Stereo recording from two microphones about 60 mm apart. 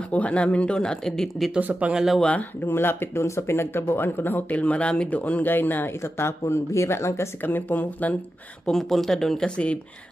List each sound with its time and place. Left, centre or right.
0.1 s speech: left; by 1.5 s centre
1.6 s speech: right
2.2 s speech: left
2.7 s speech: left
3.3 s speech: left
5.9 s speech: left
7.4 s speech: left
8.6 s speech: centre